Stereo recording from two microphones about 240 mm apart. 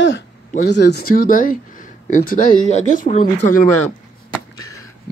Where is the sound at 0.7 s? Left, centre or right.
Left.